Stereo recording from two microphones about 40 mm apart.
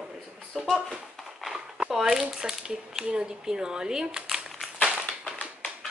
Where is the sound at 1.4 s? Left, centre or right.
Centre.